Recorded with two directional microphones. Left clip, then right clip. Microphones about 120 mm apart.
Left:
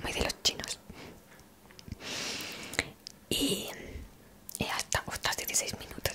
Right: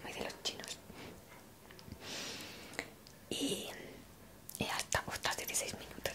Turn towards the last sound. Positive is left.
turn(degrees=25)  # may be behind; listen again after turning